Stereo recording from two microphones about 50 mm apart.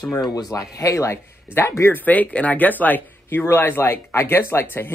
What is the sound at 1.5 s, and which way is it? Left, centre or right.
Speech, left.